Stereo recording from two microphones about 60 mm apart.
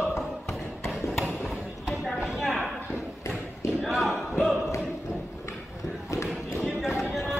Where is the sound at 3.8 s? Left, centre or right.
Centre.